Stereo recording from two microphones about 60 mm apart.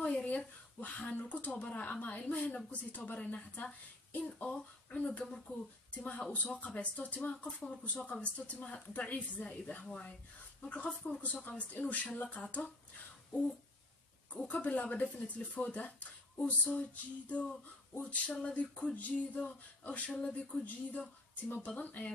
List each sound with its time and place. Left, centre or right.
0.0 s speech: left
14.5 s speech: left